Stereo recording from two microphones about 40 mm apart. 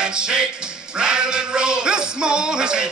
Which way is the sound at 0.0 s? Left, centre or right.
Right.